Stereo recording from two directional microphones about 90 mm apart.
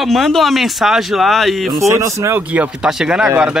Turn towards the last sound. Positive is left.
turn(degrees=-10)  # may be behind; listen again after turning